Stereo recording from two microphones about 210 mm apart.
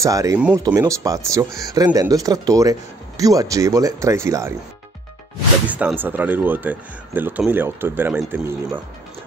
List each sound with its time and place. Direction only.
0.0 s speech: 15° right (ahead or behind)
5.7 s speech: 5° right (ahead or behind)